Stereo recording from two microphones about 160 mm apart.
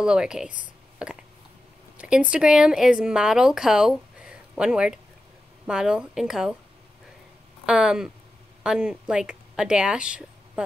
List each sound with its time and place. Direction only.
0.0 s a woman's voice: 5° right (ahead or behind)
7.6 s a woman's voice: 5° right (ahead or behind)